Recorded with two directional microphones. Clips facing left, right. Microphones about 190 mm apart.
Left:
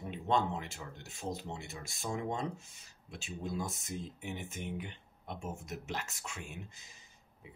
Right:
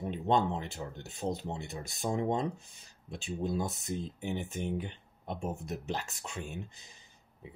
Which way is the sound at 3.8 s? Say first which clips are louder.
Right 5 dB; 35° right (ahead or behind).